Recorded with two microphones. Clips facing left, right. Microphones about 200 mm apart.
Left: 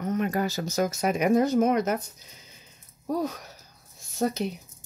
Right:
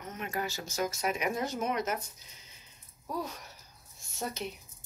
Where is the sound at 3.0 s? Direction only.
45° left (ahead or behind).